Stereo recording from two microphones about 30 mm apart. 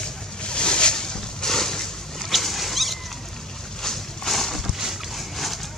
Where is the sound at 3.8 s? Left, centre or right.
Centre.